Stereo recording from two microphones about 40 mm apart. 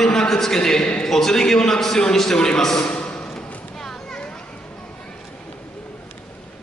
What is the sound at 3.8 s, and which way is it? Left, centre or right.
Children playing, centre.